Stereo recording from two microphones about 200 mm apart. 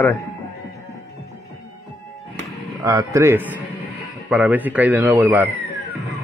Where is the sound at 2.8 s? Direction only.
15° right (ahead or behind).